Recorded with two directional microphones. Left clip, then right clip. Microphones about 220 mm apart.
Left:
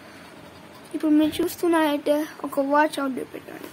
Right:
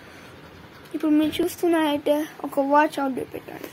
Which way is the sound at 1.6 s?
Centre (ahead or behind).